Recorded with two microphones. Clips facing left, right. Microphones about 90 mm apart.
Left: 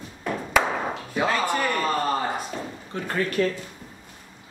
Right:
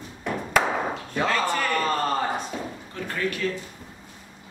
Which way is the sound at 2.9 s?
35° left (ahead or behind).